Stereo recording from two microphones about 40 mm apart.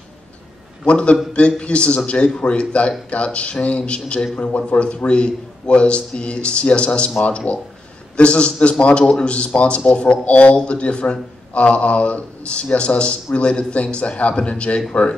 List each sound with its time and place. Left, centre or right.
0.8 s a man's voice: left